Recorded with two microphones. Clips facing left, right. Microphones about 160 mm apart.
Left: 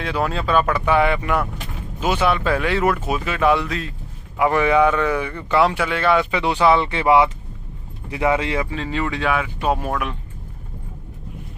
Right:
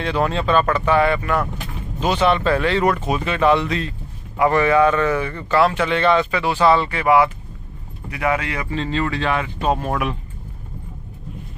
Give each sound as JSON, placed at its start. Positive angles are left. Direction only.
{"t": 0.0, "sound": "speech", "side_deg": 5}
{"t": 6.3, "sound": "speech", "side_deg": 20}
{"t": 8.6, "sound": "speech", "side_deg": 10}